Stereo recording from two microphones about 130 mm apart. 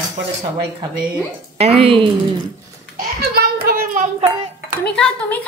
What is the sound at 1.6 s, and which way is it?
Speech, 45° right (ahead or behind).